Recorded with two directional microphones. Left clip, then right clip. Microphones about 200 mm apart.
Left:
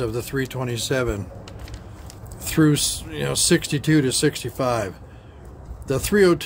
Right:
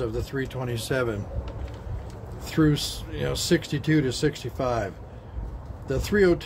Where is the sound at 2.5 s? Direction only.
35° left (ahead or behind).